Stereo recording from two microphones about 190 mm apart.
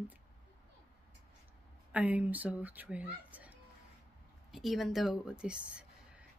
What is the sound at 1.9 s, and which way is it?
Speech, 10° right (ahead or behind).